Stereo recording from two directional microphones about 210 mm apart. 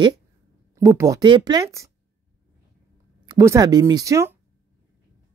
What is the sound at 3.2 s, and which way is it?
Speech, 20° right (ahead or behind).